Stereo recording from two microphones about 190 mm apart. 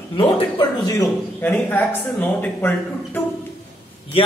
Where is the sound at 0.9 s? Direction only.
15° left (ahead or behind).